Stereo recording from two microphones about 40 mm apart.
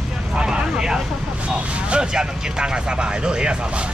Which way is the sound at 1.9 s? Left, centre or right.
Right.